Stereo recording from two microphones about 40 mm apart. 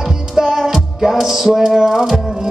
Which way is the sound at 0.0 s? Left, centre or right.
Centre.